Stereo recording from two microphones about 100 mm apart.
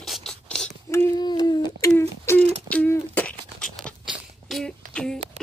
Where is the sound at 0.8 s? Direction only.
25° left (ahead or behind).